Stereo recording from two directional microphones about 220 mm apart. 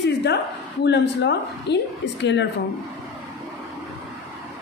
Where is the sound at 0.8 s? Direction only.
50° left (ahead or behind).